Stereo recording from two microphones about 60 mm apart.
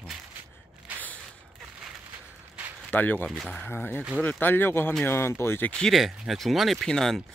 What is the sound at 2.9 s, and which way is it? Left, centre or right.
Speech, left.